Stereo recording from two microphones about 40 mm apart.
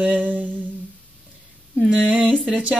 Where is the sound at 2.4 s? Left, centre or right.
Right.